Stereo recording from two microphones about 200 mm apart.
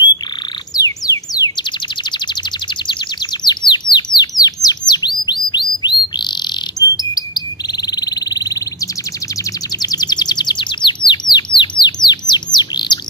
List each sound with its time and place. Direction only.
0.7 s chirp: 20° left (ahead or behind)
2.9 s bird: 20° left (ahead or behind)